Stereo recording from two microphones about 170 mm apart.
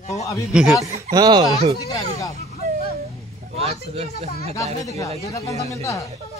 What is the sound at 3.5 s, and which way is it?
Speech, 35° right (ahead or behind).